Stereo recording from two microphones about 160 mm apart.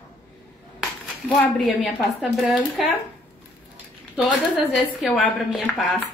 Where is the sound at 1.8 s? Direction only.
5° right (ahead or behind).